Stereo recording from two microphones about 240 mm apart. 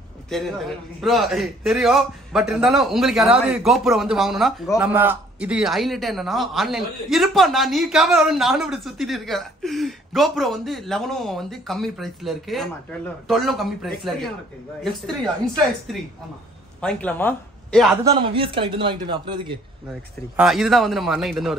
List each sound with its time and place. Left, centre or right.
0.3 s a man's voice: centre
16.8 s speech: centre
18.0 s speech: right
20.3 s a man's voice: centre